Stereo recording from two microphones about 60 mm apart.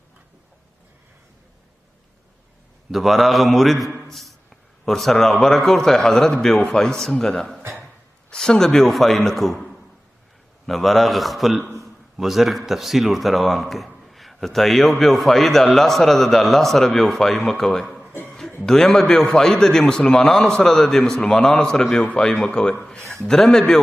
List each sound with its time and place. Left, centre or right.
2.9 s speech: centre
4.0 s a sound: centre
4.8 s a man's voice: centre
10.7 s a man's voice: centre
17.8 s music: centre
18.6 s a man's voice: centre